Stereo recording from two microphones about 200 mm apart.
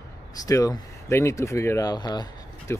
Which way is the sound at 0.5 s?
15° left (ahead or behind).